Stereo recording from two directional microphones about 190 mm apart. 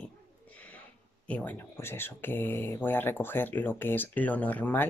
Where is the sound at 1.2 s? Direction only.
10° left (ahead or behind).